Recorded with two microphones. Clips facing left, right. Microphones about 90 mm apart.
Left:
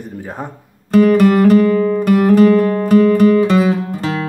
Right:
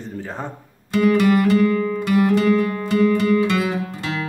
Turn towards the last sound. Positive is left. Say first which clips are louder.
# left 5 dB
turn(degrees=35)  # may be behind; listen again after turning